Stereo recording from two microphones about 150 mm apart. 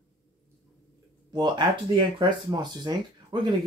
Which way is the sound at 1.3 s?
30° right (ahead or behind).